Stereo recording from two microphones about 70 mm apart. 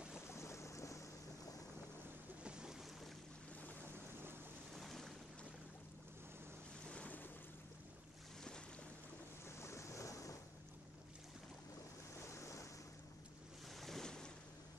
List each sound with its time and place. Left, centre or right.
0.3 s boat: left
2.4 s boat: centre
4.7 s boat: centre
6.9 s boat: centre
9.6 s waves: left
12.3 s waves: left
13.7 s waves: centre